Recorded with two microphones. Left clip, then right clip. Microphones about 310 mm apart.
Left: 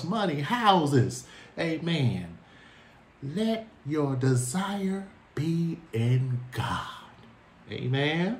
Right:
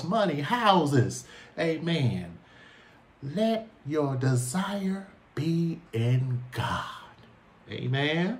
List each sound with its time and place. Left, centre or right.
0.1 s speech: centre
3.3 s speech: centre